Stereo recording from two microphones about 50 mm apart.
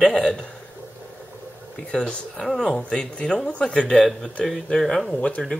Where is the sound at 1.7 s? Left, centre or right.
Left.